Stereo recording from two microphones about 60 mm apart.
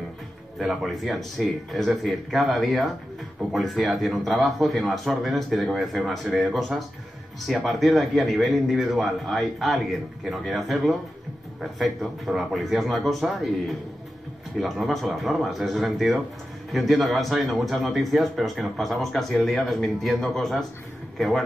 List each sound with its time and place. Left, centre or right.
0.6 s a man's voice: centre